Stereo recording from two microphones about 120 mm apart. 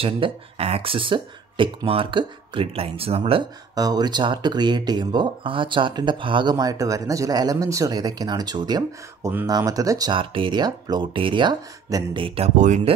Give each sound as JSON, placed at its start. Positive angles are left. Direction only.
{"t": 0.0, "sound": "speech", "side_deg": -55}
{"t": 3.7, "sound": "speech", "side_deg": -35}
{"t": 10.1, "sound": "speech", "side_deg": -45}
{"t": 12.4, "sound": "speech", "side_deg": -90}